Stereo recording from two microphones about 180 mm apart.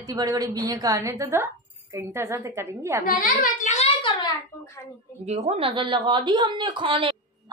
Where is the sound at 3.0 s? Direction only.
50° left (ahead or behind).